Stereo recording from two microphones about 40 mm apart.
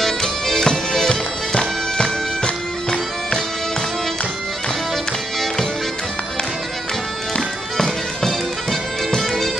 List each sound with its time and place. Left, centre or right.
0.0 s bagpipes: centre
7.7 s bagpipes: centre
9.1 s music: centre